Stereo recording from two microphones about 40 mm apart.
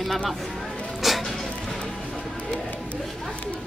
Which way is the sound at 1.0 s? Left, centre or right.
Centre.